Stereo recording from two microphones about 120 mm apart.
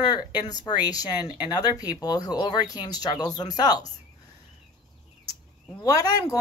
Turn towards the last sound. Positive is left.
turn(degrees=30)  # may be behind; listen again after turning